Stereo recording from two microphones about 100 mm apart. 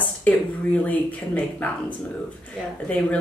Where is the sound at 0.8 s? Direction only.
15° left (ahead or behind).